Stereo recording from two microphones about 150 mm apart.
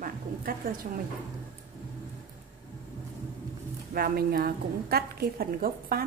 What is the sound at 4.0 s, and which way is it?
A woman's voice, 80° right.